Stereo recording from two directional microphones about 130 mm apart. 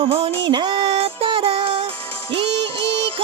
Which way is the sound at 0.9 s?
45° right (ahead or behind).